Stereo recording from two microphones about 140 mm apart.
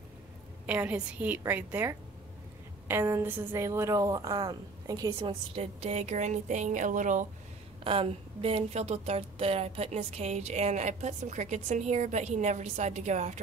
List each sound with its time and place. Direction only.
0.7 s a woman's voice: 10° right (ahead or behind); by 5.3 s 30° right (ahead or behind)
5.6 s speech: 50° right (ahead or behind)
7.8 s speech: 40° right (ahead or behind); by 13.4 s 55° right (ahead or behind)